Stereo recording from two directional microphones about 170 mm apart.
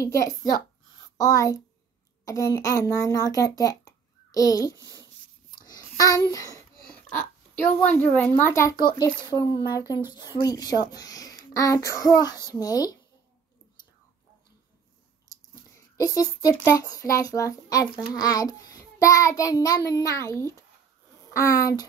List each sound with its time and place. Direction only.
0.0 s a child's voice: 20° left (ahead or behind)
5.7 s child singing: 20° left (ahead or behind)
6.3 s a child's voice: 20° left (ahead or behind)
15.3 s chewing: 20° left (ahead or behind)
16.2 s a child's voice: 20° left (ahead or behind)
18.1 s child singing: 20° left (ahead or behind)
19.9 s a child's voice: 15° left (ahead or behind)